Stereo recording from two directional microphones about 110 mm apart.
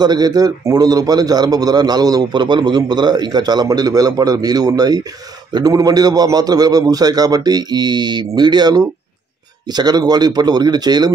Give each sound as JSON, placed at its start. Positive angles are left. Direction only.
{"t": 0.0, "sound": "a man's voice", "side_deg": -35}